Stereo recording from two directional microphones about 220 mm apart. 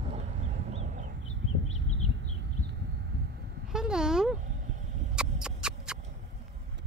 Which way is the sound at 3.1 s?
45° right (ahead or behind).